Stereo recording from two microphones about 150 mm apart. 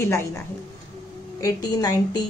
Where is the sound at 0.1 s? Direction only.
15° left (ahead or behind).